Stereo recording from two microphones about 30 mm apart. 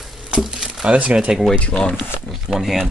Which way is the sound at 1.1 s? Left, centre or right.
Right.